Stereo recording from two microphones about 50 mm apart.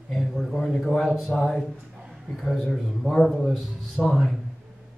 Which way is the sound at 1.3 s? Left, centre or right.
Centre.